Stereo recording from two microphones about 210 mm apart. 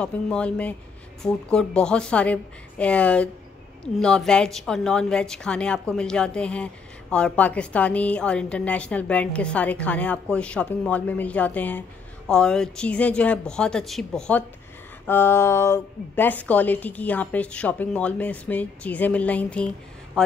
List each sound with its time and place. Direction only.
0.0 s a woman's voice: 5° left (ahead or behind)